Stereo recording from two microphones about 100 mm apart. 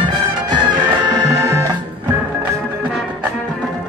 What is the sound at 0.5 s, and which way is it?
Music, 45° right (ahead or behind).